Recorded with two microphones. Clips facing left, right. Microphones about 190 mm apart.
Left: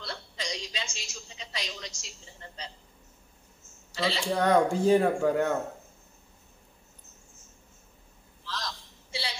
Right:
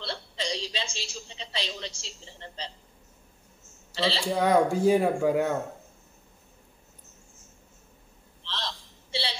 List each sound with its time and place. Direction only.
0.0 s a woman's voice: 30° right (ahead or behind)
3.9 s a woman's voice: 30° right (ahead or behind)
4.4 s speech: 10° right (ahead or behind)
8.5 s a sound: 30° right (ahead or behind)